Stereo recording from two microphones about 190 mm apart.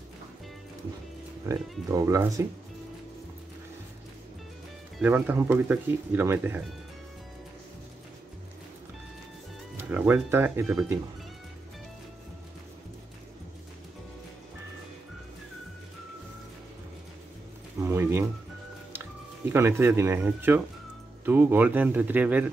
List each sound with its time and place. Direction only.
1.5 s speech: 15° right (ahead or behind)
4.9 s speech: 10° right (ahead or behind)
9.8 s speech: 10° right (ahead or behind)
17.8 s a sound: 15° right (ahead or behind)
19.5 s speech: 10° right (ahead or behind)